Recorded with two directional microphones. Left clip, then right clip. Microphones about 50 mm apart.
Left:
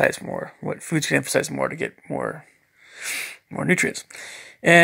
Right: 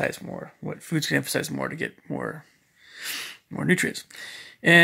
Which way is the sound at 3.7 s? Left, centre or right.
Centre.